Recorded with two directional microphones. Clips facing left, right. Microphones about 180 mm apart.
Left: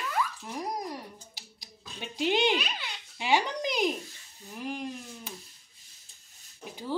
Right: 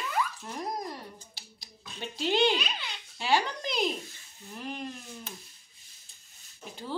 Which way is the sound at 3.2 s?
15° left (ahead or behind).